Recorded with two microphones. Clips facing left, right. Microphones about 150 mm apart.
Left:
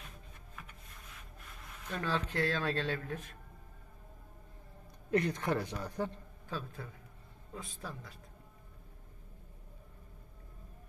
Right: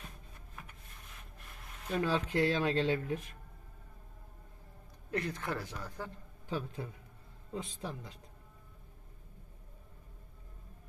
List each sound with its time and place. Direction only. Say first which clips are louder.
1.9 s speech: right 4 dB; 10° right (ahead or behind)
5.1 s speech: left 5 dB; 5° right (ahead or behind)
5.4 s a man's voice: left 5 dB; 20° left (ahead or behind)
6.5 s speech: right 4 dB; 15° right (ahead or behind)